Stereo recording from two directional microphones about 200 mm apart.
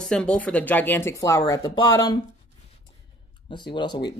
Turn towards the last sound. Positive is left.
turn(degrees=20)  # may be behind; listen again after turning